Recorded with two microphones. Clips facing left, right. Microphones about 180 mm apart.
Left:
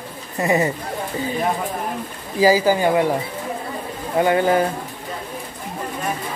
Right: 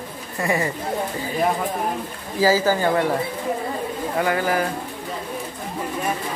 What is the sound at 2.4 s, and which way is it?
Speech, 15° left (ahead or behind).